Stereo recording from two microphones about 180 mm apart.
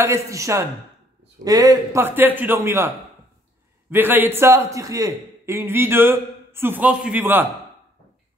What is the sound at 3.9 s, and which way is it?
A man's voice, 10° right (ahead or behind).